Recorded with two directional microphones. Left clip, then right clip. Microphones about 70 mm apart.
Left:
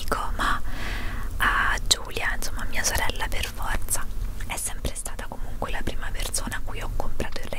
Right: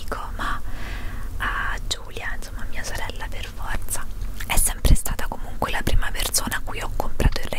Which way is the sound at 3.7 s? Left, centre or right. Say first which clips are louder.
Left 1 dB; centre.